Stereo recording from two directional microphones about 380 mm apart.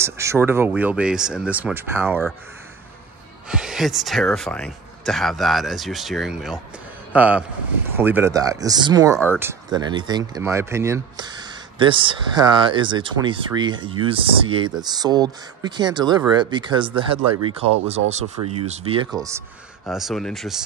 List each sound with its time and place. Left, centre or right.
0.0 s speech: centre
3.4 s a man's voice: centre